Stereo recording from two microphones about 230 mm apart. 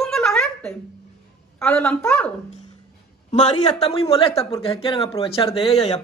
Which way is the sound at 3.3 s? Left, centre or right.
Left.